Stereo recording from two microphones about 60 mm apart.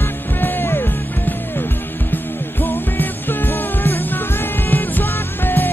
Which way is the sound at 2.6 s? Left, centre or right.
Left.